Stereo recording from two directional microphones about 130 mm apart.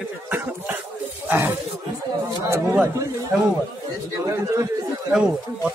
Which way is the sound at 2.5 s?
20° right (ahead or behind).